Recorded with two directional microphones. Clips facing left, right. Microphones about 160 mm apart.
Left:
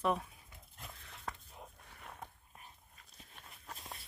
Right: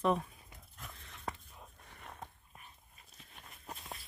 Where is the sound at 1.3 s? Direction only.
10° right (ahead or behind).